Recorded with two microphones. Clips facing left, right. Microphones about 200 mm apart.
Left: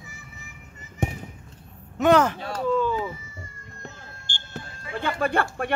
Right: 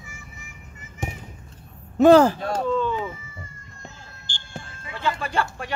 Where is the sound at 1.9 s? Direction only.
30° right (ahead or behind).